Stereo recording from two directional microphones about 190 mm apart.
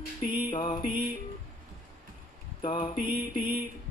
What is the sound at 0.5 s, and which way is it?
Mantra, 25° left (ahead or behind).